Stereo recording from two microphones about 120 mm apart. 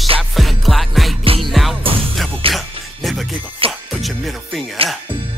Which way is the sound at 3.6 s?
50° right (ahead or behind).